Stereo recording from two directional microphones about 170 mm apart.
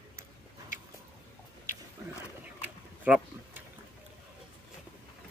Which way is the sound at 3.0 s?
10° right (ahead or behind).